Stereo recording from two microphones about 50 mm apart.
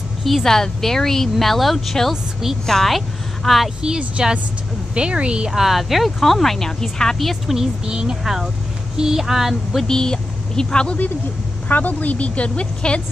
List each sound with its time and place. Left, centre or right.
0.2 s speech: centre
4.2 s speech: centre
5.5 s speech: centre
7.5 s speech: centre
8.2 s speech: centre
9.8 s speech: centre
11.7 s speech: left